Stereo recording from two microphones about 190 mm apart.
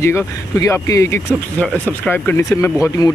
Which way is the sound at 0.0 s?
15° left (ahead or behind).